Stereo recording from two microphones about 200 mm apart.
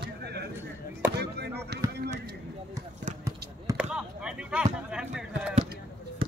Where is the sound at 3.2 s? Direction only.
10° right (ahead or behind).